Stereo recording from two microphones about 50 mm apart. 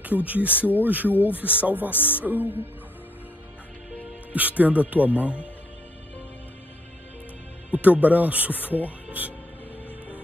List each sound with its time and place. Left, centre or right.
0.0 s speech: right
1.9 s speech: left
2.1 s speech: right
4.3 s speech: right
7.7 s speech: right